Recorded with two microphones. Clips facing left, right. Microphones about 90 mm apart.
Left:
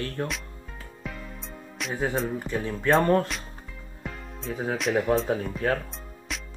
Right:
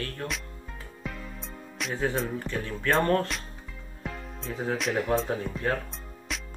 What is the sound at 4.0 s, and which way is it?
Music, centre (ahead or behind).